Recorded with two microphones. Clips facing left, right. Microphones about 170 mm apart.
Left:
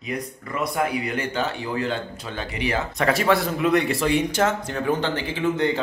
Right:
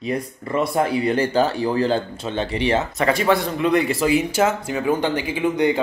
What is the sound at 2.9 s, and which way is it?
Speech, centre (ahead or behind).